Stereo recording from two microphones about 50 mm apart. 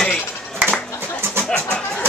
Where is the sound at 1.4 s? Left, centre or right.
Left.